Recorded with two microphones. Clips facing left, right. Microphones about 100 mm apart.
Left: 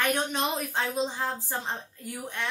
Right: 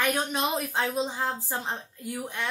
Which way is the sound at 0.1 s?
5° right (ahead or behind).